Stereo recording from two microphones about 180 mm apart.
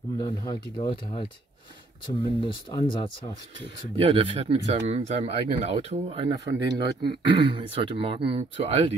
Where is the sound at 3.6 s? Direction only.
25° right (ahead or behind).